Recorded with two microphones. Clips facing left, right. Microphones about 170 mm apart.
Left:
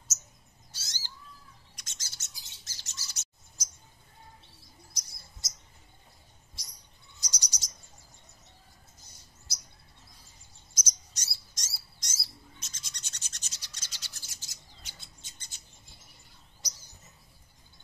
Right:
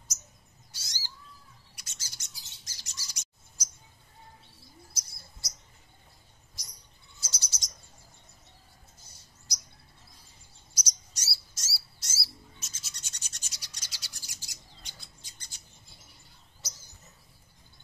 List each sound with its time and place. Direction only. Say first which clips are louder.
0.7 s bird: even; 10° right (ahead or behind)
5.4 s bird: right 1 dB; 20° left (ahead or behind)
7.2 s cricket: even; 15° left (ahead or behind)
9.5 s bird: right 2 dB; 15° right (ahead or behind)
10.7 s bird: even; 10° right (ahead or behind)
15.0 s bird: even; 25° left (ahead or behind)